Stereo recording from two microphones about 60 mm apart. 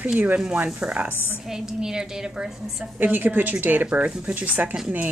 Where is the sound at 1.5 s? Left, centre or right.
Centre.